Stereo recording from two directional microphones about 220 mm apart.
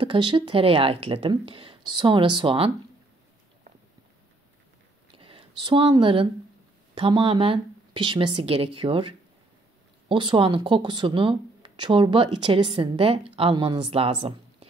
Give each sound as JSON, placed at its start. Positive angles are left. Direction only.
{"t": 0.0, "sound": "speech", "side_deg": -20}
{"t": 5.1, "sound": "a sound", "side_deg": -25}
{"t": 7.0, "sound": "speech", "side_deg": -25}